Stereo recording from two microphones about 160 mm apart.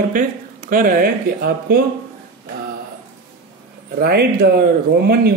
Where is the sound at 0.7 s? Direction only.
60° right (ahead or behind).